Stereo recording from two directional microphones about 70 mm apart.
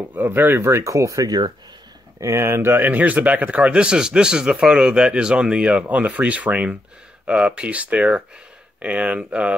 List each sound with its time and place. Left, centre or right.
0.1 s speech: right